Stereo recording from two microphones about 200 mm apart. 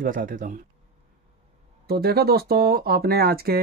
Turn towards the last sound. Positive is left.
turn(degrees=-50)  # may be behind; listen again after turning